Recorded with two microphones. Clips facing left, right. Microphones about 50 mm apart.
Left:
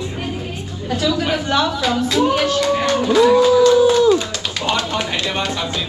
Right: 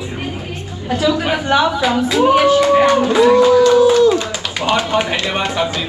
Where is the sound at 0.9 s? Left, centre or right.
Centre.